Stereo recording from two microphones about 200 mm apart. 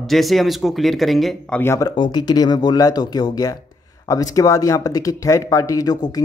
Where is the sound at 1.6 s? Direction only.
15° left (ahead or behind).